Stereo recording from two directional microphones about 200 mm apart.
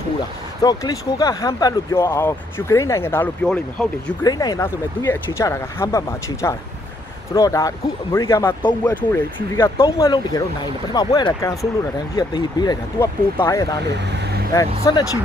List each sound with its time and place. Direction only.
0.6 s speech: 20° left (ahead or behind)
4.2 s speech: 20° left (ahead or behind)